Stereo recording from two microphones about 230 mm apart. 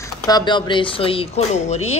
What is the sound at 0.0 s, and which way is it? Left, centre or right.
Speech, centre.